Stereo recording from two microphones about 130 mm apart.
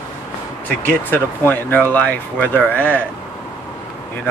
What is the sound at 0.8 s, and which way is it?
Speech, 15° left (ahead or behind).